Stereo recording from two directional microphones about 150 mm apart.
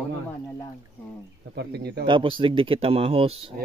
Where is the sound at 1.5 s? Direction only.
90° right.